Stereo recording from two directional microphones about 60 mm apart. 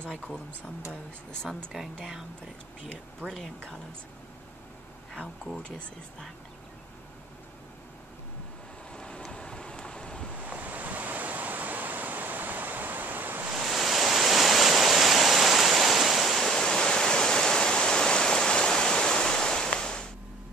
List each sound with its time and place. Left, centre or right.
1.7 s speech: centre
3.3 s speech: centre
8.9 s vehicle: centre
10.3 s waves: right
13.7 s waves: centre